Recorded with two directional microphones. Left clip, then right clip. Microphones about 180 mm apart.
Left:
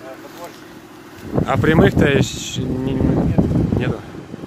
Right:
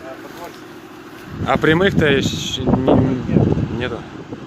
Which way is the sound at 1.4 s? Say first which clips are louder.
Right 1 dB; 10° left (ahead or behind).